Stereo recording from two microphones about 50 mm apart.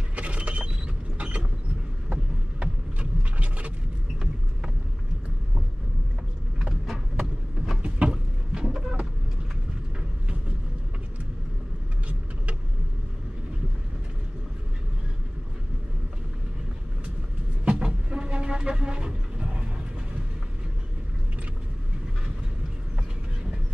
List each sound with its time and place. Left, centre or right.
0.1 s mechanisms: right
2.6 s vehicle: right
6.9 s a sound: centre
7.8 s chicken: right
17.6 s vehicle: centre